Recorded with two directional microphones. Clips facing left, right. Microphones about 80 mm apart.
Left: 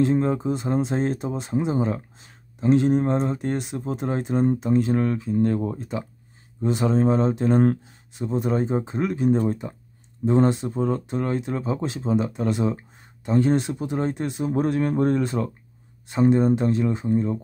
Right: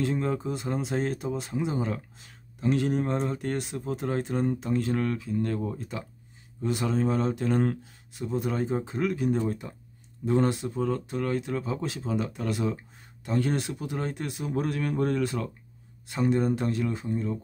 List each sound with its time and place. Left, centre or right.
0.0 s speech: left